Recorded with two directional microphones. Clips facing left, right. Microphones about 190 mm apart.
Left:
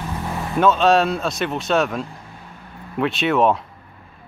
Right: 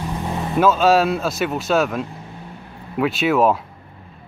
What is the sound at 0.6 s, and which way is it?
Speech, 5° right (ahead or behind).